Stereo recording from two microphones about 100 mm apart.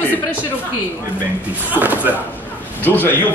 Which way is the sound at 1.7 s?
20° right (ahead or behind).